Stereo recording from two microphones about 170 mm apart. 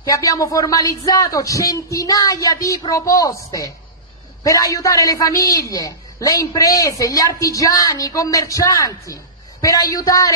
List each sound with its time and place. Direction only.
0.0 s a woman's voice: 20° left (ahead or behind)